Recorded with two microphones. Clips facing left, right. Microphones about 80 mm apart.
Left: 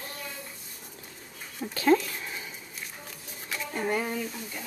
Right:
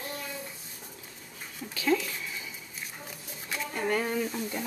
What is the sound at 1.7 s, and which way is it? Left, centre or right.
Speech, left.